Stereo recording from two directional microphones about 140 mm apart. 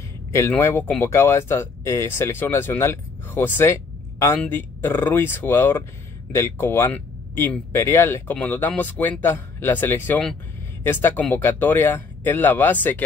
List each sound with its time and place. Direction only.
0.3 s speech: 20° left (ahead or behind)